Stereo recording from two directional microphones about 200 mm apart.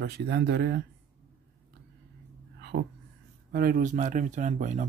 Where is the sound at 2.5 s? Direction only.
55° right (ahead or behind).